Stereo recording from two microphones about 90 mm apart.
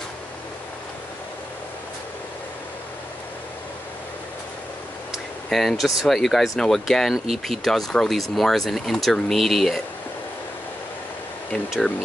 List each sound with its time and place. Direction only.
5.1 s speech: centre (ahead or behind)